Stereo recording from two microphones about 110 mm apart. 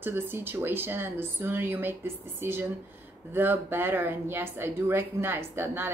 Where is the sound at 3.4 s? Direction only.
20° right (ahead or behind).